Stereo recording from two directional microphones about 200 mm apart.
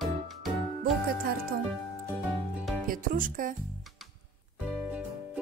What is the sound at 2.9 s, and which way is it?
Speech, 45° right (ahead or behind).